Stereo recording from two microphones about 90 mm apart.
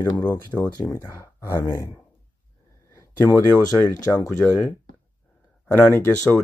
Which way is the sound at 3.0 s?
35° left (ahead or behind).